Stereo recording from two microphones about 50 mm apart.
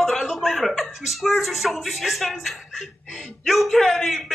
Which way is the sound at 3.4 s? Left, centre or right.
Centre.